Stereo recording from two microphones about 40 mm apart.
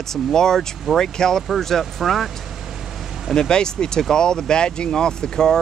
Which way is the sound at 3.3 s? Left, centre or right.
Centre.